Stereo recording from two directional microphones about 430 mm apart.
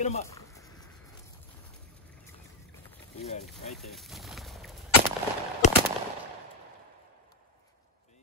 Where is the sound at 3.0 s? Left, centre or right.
Centre.